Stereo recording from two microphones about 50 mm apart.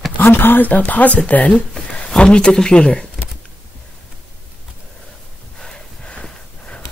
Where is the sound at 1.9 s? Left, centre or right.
Centre.